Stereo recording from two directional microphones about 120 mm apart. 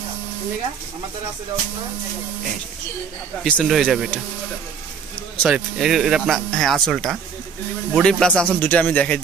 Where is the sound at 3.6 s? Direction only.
Centre (ahead or behind).